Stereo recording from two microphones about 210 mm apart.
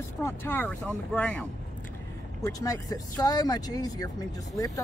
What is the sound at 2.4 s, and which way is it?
Speech, 15° left (ahead or behind).